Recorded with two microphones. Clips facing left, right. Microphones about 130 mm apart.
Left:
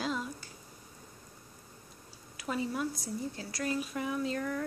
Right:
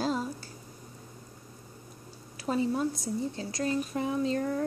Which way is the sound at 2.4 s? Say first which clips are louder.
Right 5 dB; 30° right (ahead or behind).